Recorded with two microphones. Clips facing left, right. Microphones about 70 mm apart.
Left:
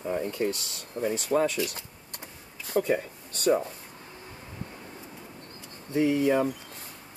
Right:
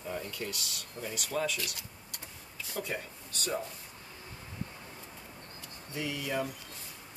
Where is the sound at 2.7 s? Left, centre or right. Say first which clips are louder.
Left 12 dB; left.